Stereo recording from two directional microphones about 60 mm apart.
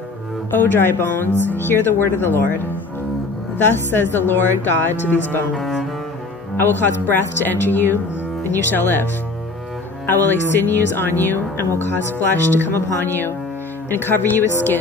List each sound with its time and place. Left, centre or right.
0.5 s speech: left
5.6 s double bass: centre
6.5 s speech: left
10.0 s speech: left